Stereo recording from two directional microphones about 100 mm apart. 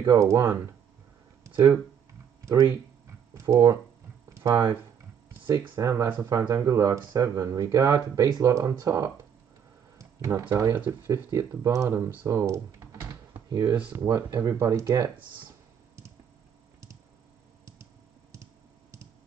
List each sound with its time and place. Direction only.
0.0 s speech: 30° right (ahead or behind)
1.4 s a sound: 30° right (ahead or behind)
2.4 s speech: 30° right (ahead or behind)
5.8 s speech: 30° right (ahead or behind)
6.1 s speech: 40° right (ahead or behind)
9.9 s a sound: 35° right (ahead or behind)
10.5 s speech: 30° right (ahead or behind)
14.0 s speech: 30° right (ahead or behind)
18.3 s clicking: 30° right (ahead or behind)